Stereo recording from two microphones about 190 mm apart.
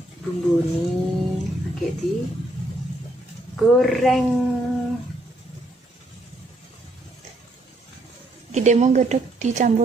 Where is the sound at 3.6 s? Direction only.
Centre (ahead or behind).